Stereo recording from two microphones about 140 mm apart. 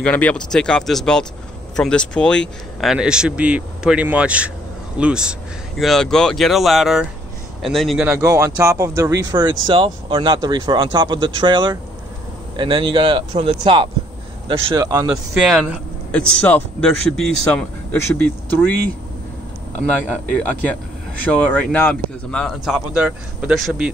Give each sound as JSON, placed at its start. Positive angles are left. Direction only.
{"t": 0.0, "sound": "speech", "side_deg": 10}
{"t": 8.2, "sound": "speech", "side_deg": -20}
{"t": 14.7, "sound": "speech", "side_deg": -25}
{"t": 15.0, "sound": "speech", "side_deg": -5}
{"t": 16.1, "sound": "speech", "side_deg": 10}
{"t": 21.3, "sound": "speech", "side_deg": 10}
{"t": 22.7, "sound": "speech", "side_deg": -5}